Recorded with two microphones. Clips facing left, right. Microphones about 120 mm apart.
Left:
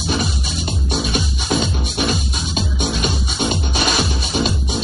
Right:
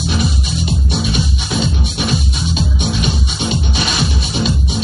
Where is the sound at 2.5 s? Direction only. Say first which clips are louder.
Right 1 dB; 45° left (ahead or behind).